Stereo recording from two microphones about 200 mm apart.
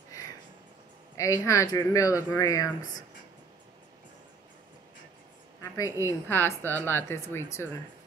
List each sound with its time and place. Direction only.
1.1 s a woman's voice: 15° left (ahead or behind)
5.6 s a woman's voice: 15° left (ahead or behind)